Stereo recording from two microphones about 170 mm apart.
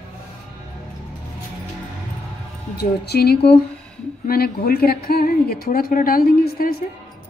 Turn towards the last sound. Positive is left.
turn(degrees=65)  # may be behind; listen again after turning